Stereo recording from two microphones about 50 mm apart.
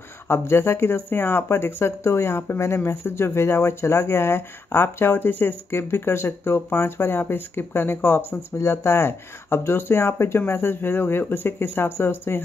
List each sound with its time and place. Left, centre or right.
0.3 s speech: left
2.0 s speech: left
2.6 s speech: left
5.7 s speech: left
8.3 s speech: left